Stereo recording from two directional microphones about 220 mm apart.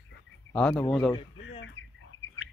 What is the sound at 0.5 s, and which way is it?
Speech, 5° left (ahead or behind).